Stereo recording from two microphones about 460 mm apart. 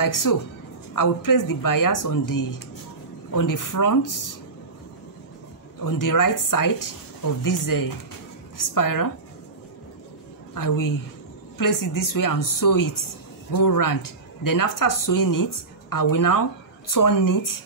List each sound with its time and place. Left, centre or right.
0.0 s speech: left
5.8 s speech: left
10.5 s a woman's voice: left